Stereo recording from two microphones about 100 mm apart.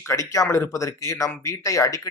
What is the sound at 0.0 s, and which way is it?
Speech, 30° left (ahead or behind).